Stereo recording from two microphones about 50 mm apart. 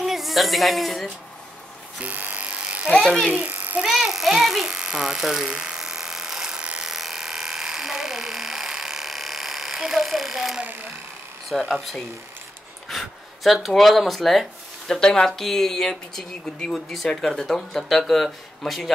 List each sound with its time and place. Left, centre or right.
0.0 s speech: centre
2.0 s electric toothbrush: right
2.2 s electric shaver: right
2.9 s speech: centre
3.3 s a child's voice: right
3.8 s speech: centre
4.6 s speech: centre
5.5 s electric shaver: centre
6.8 s electric shaver: centre
11.4 s speech: centre
15.0 s speech: centre